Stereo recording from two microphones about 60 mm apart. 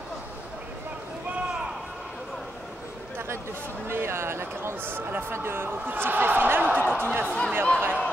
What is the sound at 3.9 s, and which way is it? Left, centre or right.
Speech, right.